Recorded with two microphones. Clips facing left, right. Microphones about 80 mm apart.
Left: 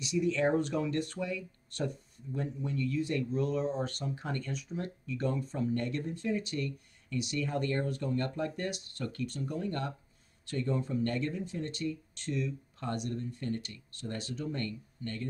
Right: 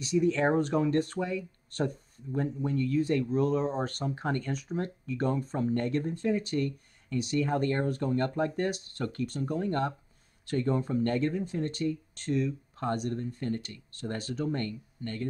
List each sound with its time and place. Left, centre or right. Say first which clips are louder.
0.0 s speech: right 3 dB; right